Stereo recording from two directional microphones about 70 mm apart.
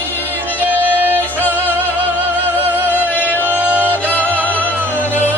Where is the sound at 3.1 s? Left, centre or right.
Left.